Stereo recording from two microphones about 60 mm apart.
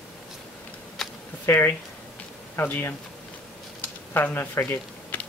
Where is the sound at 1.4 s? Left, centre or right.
Left.